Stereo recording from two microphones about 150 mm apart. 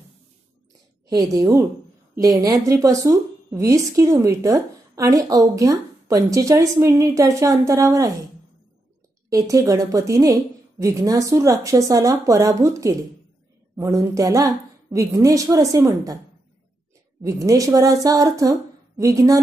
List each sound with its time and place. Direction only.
1.0 s a woman's voice: 25° right (ahead or behind)
9.3 s a woman's voice: 25° right (ahead or behind)
17.2 s a woman's voice: 20° right (ahead or behind)